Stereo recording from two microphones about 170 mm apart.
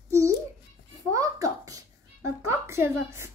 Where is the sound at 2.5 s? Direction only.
15° right (ahead or behind).